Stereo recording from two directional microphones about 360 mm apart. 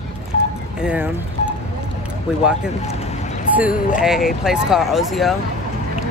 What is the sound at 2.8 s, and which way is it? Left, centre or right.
Vehicle, centre.